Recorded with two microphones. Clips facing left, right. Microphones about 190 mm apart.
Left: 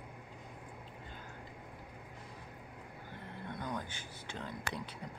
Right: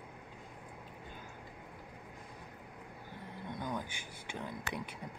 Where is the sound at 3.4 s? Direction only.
10° right (ahead or behind).